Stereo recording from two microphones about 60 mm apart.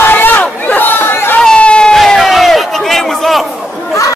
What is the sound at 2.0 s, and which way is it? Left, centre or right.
Crowd, centre.